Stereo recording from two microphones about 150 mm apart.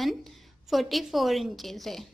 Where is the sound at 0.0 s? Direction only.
Centre (ahead or behind).